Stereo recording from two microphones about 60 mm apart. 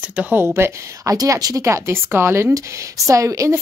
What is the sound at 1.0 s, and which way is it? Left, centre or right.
Speech, right.